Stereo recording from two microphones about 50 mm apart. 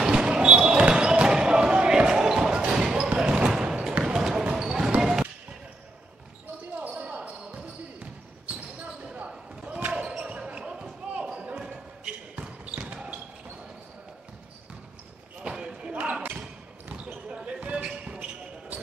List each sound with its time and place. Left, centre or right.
0.0 s basketball bounce: centre
6.9 s basketball bounce: right
9.8 s basketball bounce: right
12.4 s basketball bounce: right
15.4 s basketball bounce: centre
16.2 s a sound: right
17.3 s basketball bounce: right